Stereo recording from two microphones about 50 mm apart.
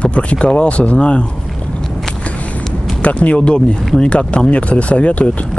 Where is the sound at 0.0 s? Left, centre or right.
Left.